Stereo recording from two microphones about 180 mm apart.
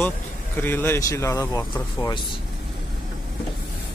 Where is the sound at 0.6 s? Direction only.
10° left (ahead or behind).